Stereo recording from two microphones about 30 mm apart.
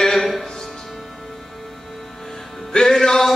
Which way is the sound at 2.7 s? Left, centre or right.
Centre.